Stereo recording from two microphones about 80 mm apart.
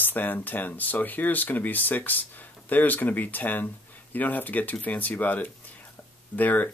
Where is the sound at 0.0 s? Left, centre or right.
Left.